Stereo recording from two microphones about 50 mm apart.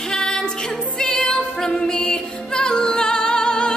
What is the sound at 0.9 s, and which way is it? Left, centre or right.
Music, centre.